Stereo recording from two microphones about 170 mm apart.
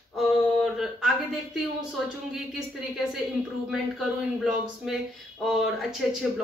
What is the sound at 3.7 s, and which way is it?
A woman's voice, centre (ahead or behind).